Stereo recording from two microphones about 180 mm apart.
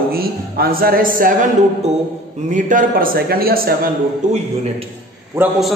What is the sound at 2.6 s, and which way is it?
A man's voice, 45° right (ahead or behind).